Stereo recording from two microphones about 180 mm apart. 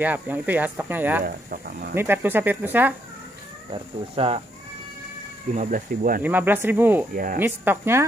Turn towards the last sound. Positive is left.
turn(degrees=-10)  # may be behind; listen again after turning